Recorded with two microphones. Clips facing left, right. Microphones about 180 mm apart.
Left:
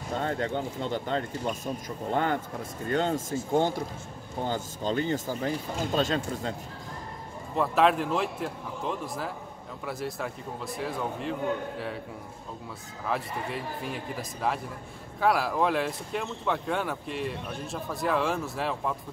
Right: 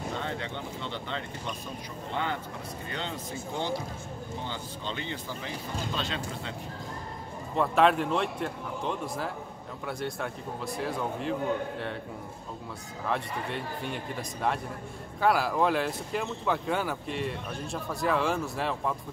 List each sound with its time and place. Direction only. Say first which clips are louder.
0.1 s speech: left 10 dB; 45° left (ahead or behind)
7.5 s speech: even; centre (ahead or behind)
13.0 s speech: even; centre (ahead or behind)